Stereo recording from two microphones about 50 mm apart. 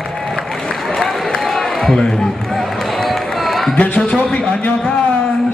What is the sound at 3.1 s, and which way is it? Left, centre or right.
Music, centre.